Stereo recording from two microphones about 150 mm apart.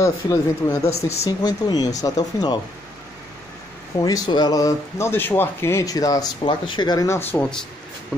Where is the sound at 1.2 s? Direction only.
25° left (ahead or behind).